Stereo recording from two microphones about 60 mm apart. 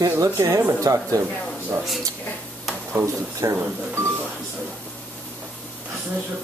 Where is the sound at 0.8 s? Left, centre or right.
Right.